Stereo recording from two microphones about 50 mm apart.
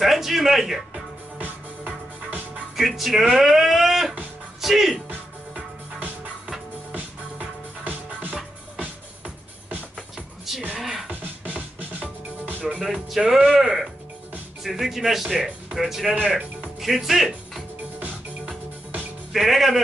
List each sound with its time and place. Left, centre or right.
0.0 s speech: centre
1.4 s music: right
2.7 s speech: centre
6.9 s music: right
10.1 s music: centre
10.8 s beatboxing: centre
11.1 s music: right
12.8 s speech: centre
16.3 s music: centre
19.3 s speech: centre